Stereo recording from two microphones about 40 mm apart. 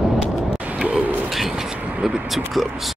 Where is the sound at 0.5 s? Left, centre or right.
Right.